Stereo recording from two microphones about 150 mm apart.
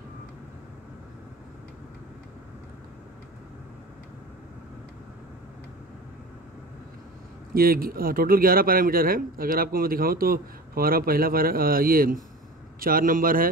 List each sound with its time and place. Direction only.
7.5 s speech: 80° right